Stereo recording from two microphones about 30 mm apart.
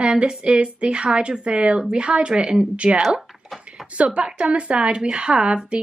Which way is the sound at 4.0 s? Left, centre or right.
Right.